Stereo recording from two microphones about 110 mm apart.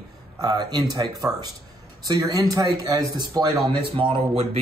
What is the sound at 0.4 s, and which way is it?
Speech, 40° right (ahead or behind).